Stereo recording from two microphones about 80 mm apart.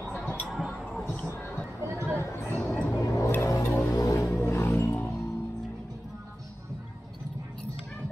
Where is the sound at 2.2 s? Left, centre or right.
Left.